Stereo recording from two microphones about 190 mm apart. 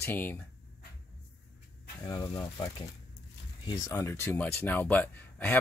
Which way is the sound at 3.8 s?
15° left (ahead or behind).